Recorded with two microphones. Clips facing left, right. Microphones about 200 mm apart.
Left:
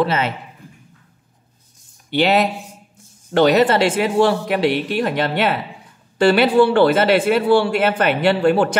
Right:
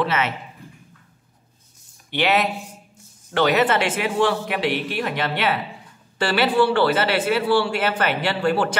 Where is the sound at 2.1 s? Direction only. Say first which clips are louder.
Left 4 dB; 35° left (ahead or behind).